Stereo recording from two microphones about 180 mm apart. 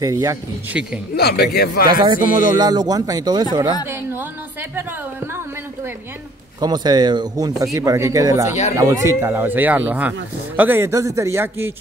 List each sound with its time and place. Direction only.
0.0 s speech: 20° right (ahead or behind)
0.7 s speech: 5° right (ahead or behind)
1.1 s speech: 65° left (ahead or behind)
1.9 s speech: 25° right (ahead or behind)
6.6 s speech: 25° right (ahead or behind)